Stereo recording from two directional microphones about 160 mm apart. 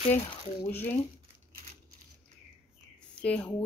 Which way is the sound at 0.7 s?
10° left (ahead or behind).